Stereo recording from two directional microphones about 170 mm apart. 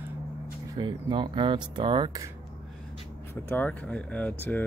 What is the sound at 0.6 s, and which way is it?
Speech, 25° right (ahead or behind).